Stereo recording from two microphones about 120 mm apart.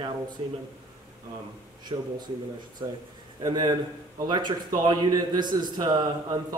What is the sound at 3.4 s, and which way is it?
Speech, 35° right (ahead or behind).